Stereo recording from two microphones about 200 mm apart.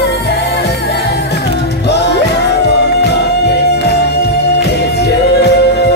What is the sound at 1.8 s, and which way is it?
Music, 55° left (ahead or behind).